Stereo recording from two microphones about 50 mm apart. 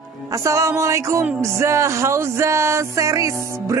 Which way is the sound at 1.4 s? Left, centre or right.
Right.